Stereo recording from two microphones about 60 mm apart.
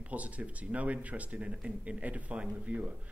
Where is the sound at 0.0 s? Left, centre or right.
Right.